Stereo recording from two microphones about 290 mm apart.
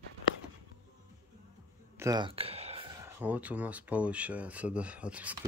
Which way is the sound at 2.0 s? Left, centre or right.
Centre.